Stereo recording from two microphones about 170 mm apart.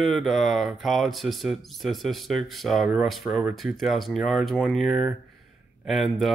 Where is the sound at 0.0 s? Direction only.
Centre (ahead or behind).